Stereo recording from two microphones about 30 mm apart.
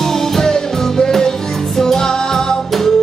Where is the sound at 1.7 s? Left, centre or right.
Centre.